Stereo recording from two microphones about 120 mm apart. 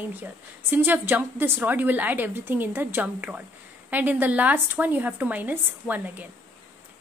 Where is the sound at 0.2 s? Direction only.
15° right (ahead or behind).